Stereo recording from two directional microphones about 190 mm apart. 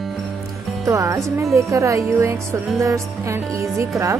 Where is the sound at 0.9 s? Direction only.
15° right (ahead or behind).